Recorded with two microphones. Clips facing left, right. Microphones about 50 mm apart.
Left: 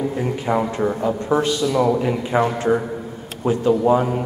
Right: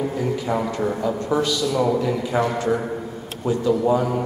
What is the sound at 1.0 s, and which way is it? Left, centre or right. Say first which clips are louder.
A man's voice: left 2 dB; left.